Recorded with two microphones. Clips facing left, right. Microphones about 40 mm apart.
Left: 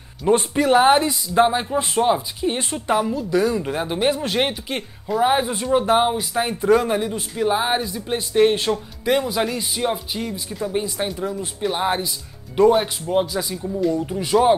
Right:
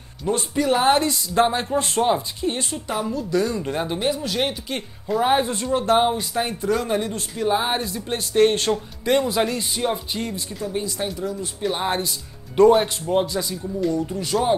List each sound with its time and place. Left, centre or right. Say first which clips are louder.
0.3 s speech: left 4 dB; left
0.7 s speech: left 4 dB; centre
2.5 s speech: left 5 dB; left; by 4.0 s centre
4.0 s speech: left 5 dB; left
4.5 s speech: left 1 dB; centre
5.0 s a woman's voice: left 1 dB; centre
5.5 s speech: left 2 dB; centre
6.6 s speech: left 8 dB; left
6.9 s speech: left 1 dB; centre
10.7 s speech: left 2 dB; left
11.6 s a woman's voice: left 2 dB; centre
13.9 s speech: left 4 dB; left